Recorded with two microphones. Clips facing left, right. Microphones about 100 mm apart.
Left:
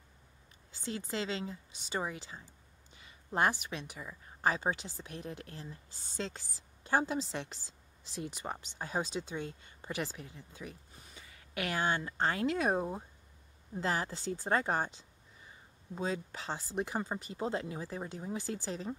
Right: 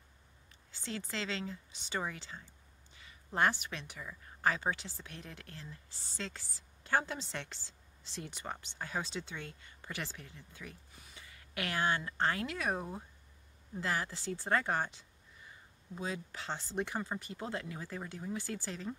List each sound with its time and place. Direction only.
0.7 s speech: 15° left (ahead or behind)
3.7 s speech: 15° left (ahead or behind)